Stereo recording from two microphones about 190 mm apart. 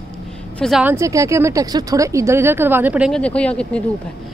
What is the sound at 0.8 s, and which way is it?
Speech, 15° right (ahead or behind).